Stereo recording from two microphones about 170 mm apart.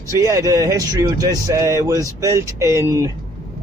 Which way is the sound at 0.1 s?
20° right (ahead or behind).